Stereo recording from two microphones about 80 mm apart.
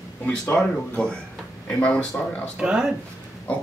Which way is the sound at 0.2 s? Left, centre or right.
Centre.